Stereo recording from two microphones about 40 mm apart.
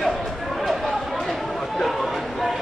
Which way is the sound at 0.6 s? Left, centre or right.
Centre.